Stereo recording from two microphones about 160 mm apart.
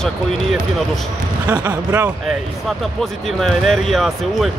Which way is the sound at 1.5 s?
10° right (ahead or behind).